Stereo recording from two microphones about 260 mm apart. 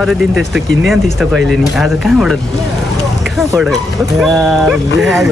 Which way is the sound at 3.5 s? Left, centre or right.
Centre.